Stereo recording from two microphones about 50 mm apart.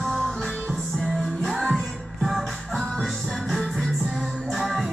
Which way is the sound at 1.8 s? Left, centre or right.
Centre.